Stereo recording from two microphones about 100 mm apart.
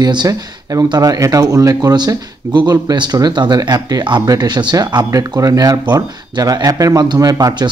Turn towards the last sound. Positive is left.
turn(degrees=-45)  # may be behind; listen again after turning